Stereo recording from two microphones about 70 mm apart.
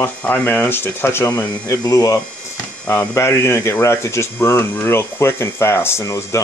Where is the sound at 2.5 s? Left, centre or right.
Left.